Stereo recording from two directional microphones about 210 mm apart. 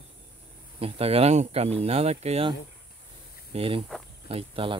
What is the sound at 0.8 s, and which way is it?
Speech, 25° right (ahead or behind).